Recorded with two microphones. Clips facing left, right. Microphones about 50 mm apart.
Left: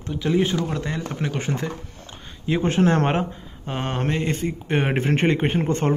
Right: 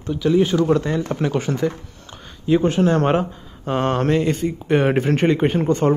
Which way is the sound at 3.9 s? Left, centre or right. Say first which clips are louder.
Right 6 dB; centre.